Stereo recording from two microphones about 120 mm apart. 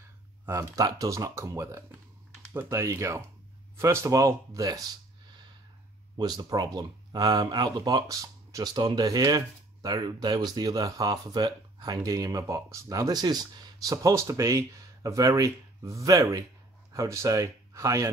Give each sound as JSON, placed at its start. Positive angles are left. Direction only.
{"t": 0.5, "sound": "speech", "side_deg": -30}
{"t": 6.1, "sound": "speech", "side_deg": -35}